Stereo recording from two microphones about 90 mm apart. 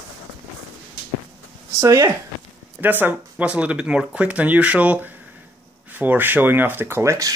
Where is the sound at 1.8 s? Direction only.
30° right (ahead or behind).